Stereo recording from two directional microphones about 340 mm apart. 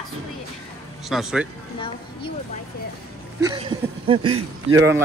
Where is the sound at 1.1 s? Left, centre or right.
Centre.